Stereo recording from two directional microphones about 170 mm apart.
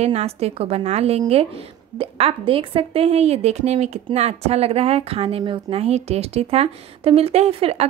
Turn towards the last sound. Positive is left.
turn(degrees=-35)  # may be behind; listen again after turning